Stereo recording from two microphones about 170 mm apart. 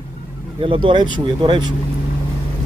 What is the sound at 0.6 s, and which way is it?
Speech, 30° right (ahead or behind).